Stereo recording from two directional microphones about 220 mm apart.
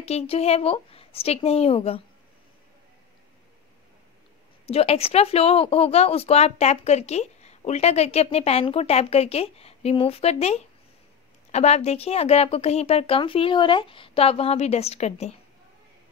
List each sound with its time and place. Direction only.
0.0 s speech: 30° left (ahead or behind)
4.6 s speech: 25° left (ahead or behind)